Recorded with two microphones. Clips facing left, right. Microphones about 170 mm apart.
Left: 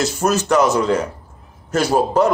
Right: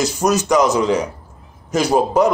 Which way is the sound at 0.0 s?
15° right (ahead or behind).